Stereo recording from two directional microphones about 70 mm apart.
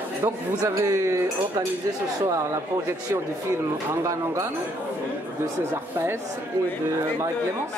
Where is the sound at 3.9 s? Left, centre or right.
Right.